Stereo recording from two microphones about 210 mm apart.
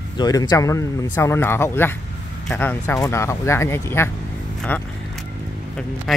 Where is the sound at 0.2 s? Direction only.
20° left (ahead or behind).